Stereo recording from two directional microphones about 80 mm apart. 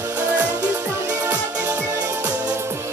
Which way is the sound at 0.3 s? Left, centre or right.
Right.